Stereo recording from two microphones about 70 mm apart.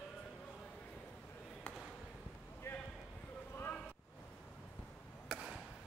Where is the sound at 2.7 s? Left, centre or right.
Left.